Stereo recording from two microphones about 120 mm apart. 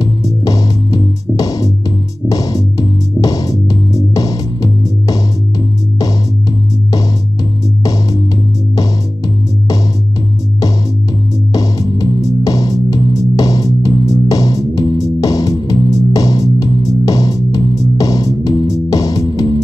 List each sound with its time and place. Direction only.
0.0 s music: 30° left (ahead or behind)
7.8 s music: 30° left (ahead or behind)
11.5 s music: 30° left (ahead or behind)